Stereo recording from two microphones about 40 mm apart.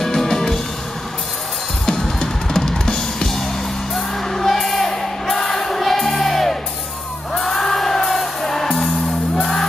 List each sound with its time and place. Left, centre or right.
0.0 s music: centre
1.9 s drum kit: centre
3.9 s music: centre